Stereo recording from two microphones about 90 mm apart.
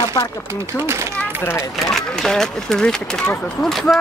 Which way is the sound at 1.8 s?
5° left (ahead or behind).